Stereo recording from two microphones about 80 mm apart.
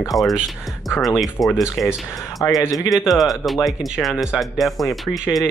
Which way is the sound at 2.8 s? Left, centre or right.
Centre.